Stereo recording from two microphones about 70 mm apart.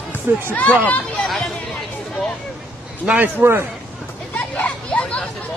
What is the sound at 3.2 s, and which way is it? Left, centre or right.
Speech, right.